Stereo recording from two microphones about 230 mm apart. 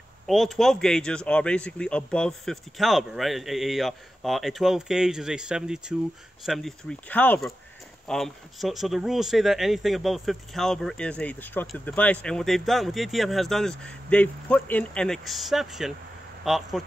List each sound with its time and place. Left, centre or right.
0.3 s speech: centre